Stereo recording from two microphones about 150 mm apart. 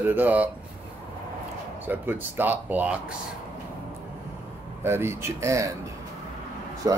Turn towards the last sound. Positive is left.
turn(degrees=-20)  # may be behind; listen again after turning